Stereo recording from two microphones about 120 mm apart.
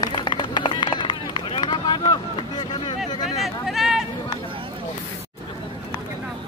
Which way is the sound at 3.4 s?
Centre (ahead or behind).